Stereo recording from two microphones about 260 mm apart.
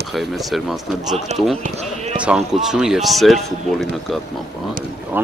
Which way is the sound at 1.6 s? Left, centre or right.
Right.